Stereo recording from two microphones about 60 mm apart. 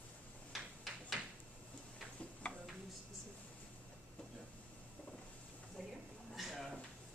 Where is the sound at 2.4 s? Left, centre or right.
Centre.